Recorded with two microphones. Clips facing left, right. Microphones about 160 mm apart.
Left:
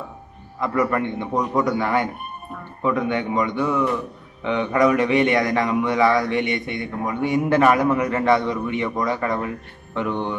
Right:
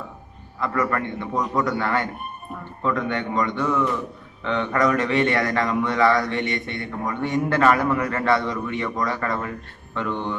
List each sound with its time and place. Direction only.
0.6 s a man's voice: 15° left (ahead or behind)